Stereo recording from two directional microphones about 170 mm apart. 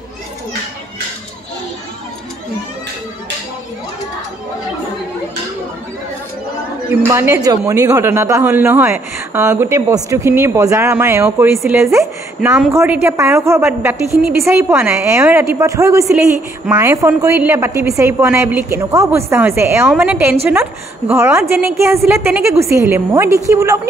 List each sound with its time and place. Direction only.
6.9 s speech: 15° right (ahead or behind)
12.4 s speech: 5° right (ahead or behind)